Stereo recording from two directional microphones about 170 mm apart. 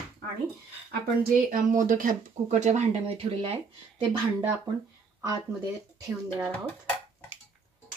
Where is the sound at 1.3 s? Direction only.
50° right (ahead or behind); by 3.6 s 35° right (ahead or behind).